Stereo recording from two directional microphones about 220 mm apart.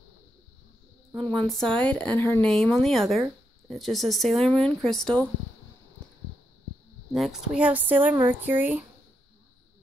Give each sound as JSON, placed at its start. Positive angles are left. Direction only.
{"t": 1.2, "sound": "a woman's voice", "side_deg": -20}
{"t": 1.5, "sound": "speech", "side_deg": 5}
{"t": 7.1, "sound": "speech", "side_deg": 0}